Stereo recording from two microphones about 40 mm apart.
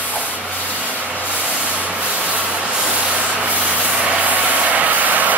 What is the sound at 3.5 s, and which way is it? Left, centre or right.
Vehicle, right.